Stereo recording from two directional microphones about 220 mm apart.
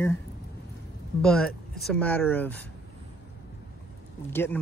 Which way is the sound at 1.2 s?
5° left (ahead or behind).